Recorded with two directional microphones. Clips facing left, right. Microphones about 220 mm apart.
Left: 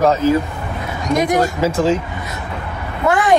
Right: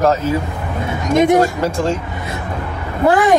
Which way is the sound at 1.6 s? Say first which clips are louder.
Left 2 dB; 5° left (ahead or behind).